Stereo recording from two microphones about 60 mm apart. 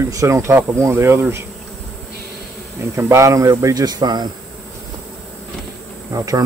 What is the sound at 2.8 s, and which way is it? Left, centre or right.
Speech, right.